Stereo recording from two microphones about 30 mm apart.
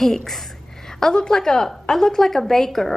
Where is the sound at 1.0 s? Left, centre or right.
Left.